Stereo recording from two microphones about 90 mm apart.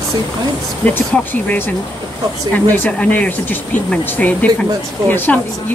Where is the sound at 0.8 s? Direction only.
15° left (ahead or behind).